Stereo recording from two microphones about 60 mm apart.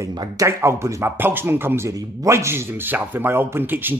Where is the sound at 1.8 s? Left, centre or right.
Right.